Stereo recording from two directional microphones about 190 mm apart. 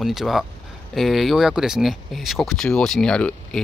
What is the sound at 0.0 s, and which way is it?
Speech, centre (ahead or behind).